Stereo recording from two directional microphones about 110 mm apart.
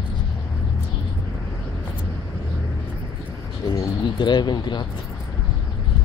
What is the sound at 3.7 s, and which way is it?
Speech, 40° left (ahead or behind).